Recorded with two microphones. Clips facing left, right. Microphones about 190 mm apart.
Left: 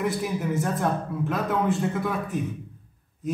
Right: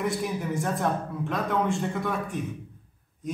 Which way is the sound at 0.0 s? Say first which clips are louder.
Left 2 dB; centre (ahead or behind).